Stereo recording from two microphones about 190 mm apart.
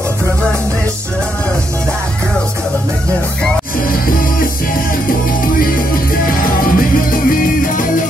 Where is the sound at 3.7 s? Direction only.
50° left (ahead or behind).